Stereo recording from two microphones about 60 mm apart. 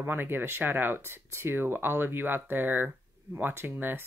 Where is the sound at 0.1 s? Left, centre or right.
Right.